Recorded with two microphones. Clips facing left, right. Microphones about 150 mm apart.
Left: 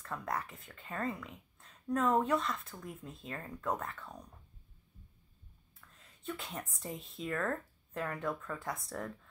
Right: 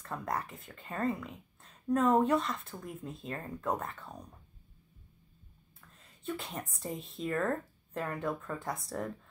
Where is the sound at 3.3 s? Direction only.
20° right (ahead or behind).